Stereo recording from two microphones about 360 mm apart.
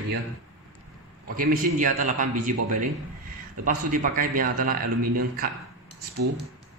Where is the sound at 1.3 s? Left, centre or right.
Right.